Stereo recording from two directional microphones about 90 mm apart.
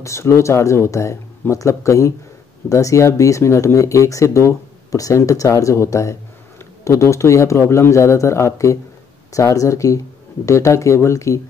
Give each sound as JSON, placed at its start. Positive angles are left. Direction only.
{"t": 0.0, "sound": "speech", "side_deg": 30}